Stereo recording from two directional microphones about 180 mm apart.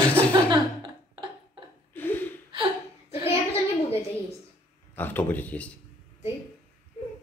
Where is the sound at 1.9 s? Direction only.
10° left (ahead or behind).